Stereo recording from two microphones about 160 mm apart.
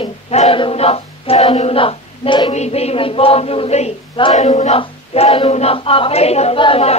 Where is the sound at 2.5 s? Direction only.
40° left (ahead or behind).